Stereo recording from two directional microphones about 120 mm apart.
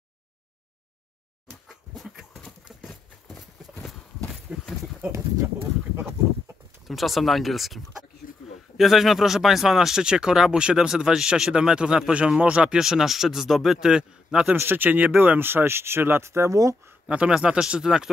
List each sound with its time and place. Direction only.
1.7 s dog: centre (ahead or behind)
3.7 s horse: 5° left (ahead or behind)
4.3 s a sound: centre (ahead or behind)
5.9 s a sound: 20° right (ahead or behind)
6.9 s speech: centre (ahead or behind); by 16.9 s 25° right (ahead or behind)
17.1 s speech: 10° right (ahead or behind)